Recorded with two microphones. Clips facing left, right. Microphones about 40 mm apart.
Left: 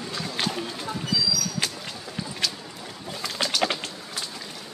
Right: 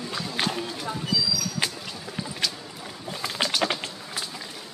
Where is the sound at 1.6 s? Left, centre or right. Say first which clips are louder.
Right 1 dB; centre.